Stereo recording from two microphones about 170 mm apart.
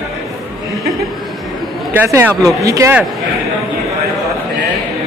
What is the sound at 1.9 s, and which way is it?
A man's voice, 15° right (ahead or behind).